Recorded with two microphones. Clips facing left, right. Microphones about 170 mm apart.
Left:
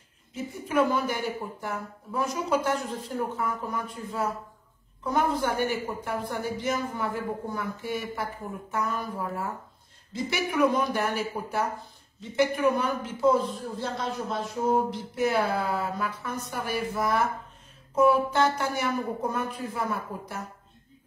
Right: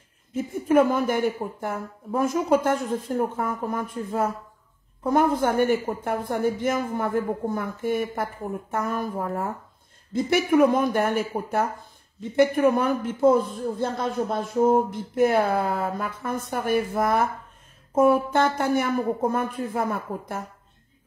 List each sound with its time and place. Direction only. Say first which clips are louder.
0.3 s speech: right 9 dB; 50° right (ahead or behind)